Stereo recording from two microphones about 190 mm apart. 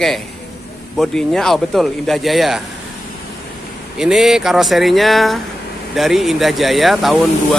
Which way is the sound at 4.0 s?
Centre (ahead or behind).